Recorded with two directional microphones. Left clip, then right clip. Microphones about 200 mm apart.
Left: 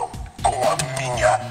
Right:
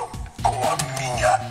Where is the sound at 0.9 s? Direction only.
20° left (ahead or behind).